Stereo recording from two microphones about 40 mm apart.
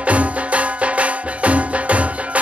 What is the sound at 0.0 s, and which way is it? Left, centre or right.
Music, right.